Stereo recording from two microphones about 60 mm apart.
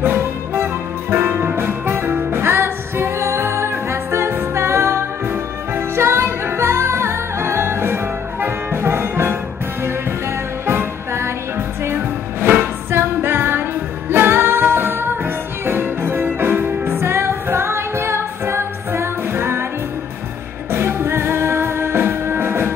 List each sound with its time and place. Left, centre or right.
0.0 s music: right
10.7 s music: right
20.7 s music: right